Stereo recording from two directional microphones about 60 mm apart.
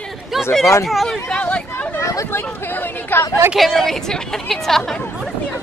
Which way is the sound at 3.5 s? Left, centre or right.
Centre.